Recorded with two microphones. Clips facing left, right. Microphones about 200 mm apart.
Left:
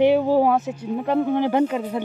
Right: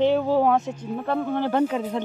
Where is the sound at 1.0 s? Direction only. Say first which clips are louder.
Left 4 dB; 15° left (ahead or behind).